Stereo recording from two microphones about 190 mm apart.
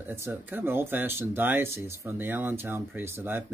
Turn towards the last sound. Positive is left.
turn(degrees=-10)  # may be behind; listen again after turning